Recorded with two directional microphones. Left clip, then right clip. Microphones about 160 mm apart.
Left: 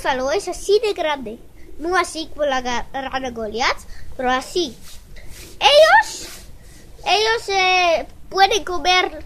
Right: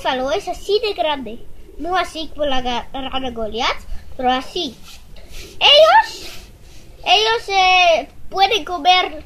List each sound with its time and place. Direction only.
0.0 s a woman's voice: 25° left (ahead or behind)